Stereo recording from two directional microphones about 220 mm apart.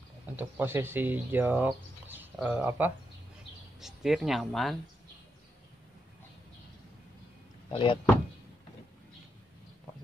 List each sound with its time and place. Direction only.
0.4 s speech: 10° right (ahead or behind)
7.7 s speech: 25° left (ahead or behind)